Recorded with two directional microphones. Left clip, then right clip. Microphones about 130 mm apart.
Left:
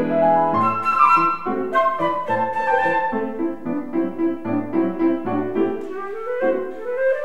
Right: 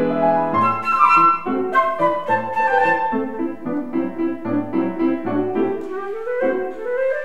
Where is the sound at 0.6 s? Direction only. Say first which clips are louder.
Right 1 dB; 30° right (ahead or behind).